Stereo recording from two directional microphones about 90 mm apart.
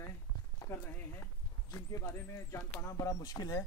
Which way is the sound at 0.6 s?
30° left (ahead or behind).